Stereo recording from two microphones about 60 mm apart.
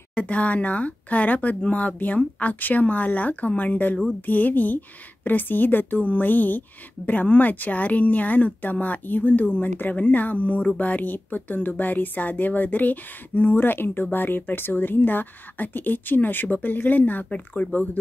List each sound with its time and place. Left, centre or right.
0.1 s speech: left